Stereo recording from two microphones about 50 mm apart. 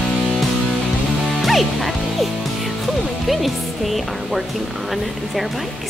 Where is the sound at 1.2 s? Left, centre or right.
Centre.